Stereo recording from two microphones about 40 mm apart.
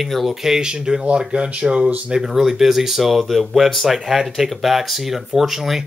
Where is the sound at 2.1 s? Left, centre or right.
Centre.